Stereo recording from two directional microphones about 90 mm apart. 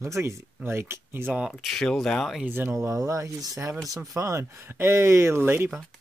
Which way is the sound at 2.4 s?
25° right (ahead or behind).